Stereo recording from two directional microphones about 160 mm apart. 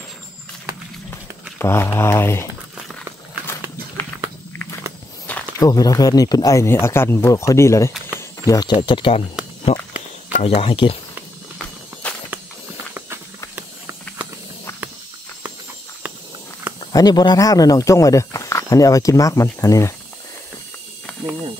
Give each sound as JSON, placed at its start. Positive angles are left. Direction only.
{"t": 1.6, "sound": "speech", "side_deg": 15}
{"t": 5.6, "sound": "speech", "side_deg": 20}
{"t": 8.2, "sound": "a sound", "side_deg": 20}
{"t": 8.8, "sound": "speech", "side_deg": 30}
{"t": 9.7, "sound": "walk", "side_deg": 40}
{"t": 10.4, "sound": "speech", "side_deg": 35}
{"t": 11.5, "sound": "walk", "side_deg": 10}
{"t": 16.9, "sound": "speech", "side_deg": 25}